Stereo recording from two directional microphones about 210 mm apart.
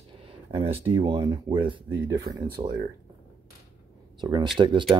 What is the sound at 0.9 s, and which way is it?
Speech, 20° right (ahead or behind).